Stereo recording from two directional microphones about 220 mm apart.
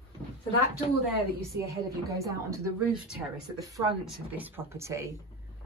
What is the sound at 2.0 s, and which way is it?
A woman's voice, 15° right (ahead or behind).